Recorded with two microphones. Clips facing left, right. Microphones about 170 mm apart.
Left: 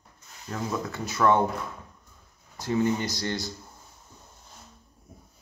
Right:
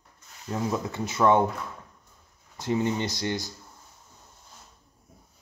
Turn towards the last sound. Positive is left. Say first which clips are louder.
# right 1 dB
turn(degrees=-15)  # may be behind; listen again after turning